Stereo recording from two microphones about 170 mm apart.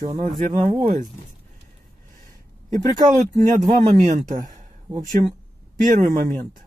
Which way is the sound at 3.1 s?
45° right (ahead or behind).